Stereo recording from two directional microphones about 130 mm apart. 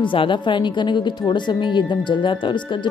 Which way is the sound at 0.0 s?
40° left (ahead or behind).